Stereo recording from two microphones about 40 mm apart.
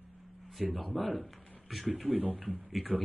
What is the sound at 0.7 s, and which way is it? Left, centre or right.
Speech, centre.